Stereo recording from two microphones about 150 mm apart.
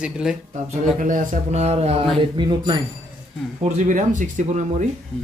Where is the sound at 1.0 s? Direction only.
60° right (ahead or behind).